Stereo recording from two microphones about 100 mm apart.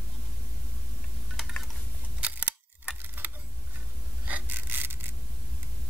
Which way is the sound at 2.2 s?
15° right (ahead or behind).